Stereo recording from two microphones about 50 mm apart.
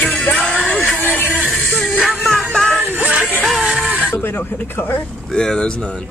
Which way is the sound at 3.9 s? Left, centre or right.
Right.